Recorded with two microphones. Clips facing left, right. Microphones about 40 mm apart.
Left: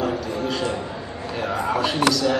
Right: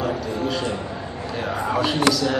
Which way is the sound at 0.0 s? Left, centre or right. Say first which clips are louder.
Even; centre.